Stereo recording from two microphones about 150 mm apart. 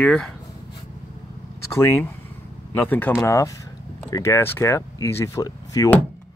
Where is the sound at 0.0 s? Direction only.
5° left (ahead or behind).